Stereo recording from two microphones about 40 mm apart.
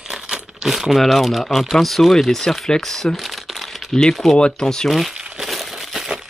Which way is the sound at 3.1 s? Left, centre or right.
Centre.